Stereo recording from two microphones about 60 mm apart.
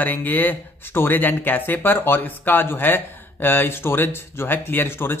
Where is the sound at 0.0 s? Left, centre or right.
Left.